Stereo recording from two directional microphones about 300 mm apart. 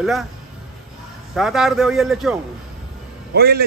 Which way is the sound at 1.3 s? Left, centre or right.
Centre.